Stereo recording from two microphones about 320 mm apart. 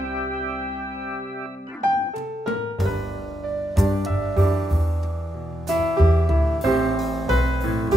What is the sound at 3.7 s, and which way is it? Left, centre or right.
Music, centre.